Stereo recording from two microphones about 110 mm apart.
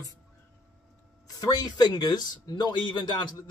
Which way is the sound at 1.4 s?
35° left (ahead or behind).